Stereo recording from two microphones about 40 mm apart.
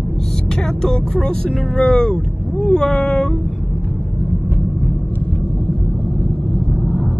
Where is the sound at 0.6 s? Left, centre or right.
Centre.